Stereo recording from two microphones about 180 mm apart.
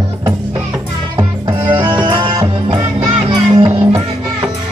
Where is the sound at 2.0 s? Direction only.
25° right (ahead or behind).